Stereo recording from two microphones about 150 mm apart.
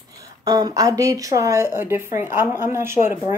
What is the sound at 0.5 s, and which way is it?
A woman's voice, 25° right (ahead or behind).